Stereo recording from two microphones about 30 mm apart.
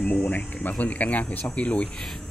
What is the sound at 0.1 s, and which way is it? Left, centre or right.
Speech, left.